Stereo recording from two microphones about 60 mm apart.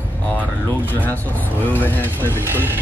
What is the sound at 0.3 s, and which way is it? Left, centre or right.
Speech, left.